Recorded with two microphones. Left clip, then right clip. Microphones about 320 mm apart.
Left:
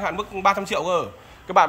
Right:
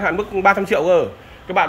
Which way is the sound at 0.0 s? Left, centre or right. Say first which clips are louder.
Right 5 dB; centre.